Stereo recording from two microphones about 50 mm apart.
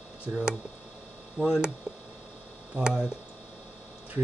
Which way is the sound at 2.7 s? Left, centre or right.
Centre.